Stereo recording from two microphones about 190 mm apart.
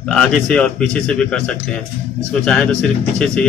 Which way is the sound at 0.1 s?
5° left (ahead or behind).